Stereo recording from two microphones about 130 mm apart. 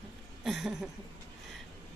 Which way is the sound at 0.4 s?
Centre (ahead or behind).